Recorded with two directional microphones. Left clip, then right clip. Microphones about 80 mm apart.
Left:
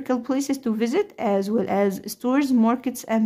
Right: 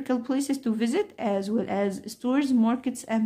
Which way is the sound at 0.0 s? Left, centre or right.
Left.